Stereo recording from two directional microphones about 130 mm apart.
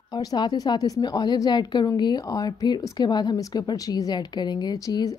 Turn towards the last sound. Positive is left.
turn(degrees=30)  # may be behind; listen again after turning